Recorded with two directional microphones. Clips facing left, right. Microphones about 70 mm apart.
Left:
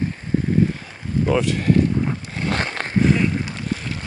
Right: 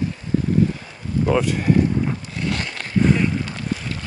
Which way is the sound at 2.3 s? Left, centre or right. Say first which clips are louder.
Left 2 dB; left.